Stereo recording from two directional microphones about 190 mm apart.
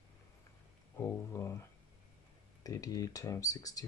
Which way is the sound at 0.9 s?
15° left (ahead or behind).